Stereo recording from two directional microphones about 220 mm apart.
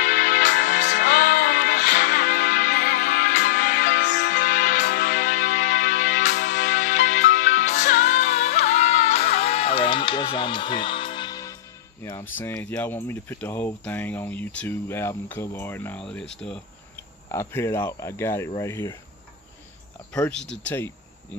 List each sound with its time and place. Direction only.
0.0 s music: 35° left (ahead or behind); by 11.5 s 20° left (ahead or behind)
12.0 s speech: 15° left (ahead or behind)
20.2 s speech: 5° left (ahead or behind)